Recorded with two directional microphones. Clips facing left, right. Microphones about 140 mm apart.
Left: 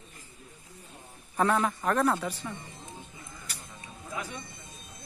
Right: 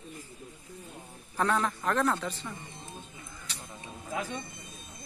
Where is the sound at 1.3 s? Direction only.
5° left (ahead or behind).